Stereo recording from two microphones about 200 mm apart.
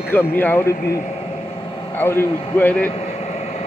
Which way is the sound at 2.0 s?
10° left (ahead or behind).